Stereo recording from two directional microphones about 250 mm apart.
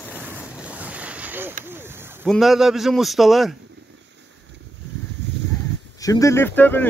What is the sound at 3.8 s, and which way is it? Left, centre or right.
Vehicle, right.